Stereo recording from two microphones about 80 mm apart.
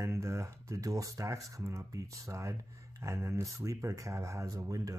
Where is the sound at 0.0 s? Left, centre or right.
Right.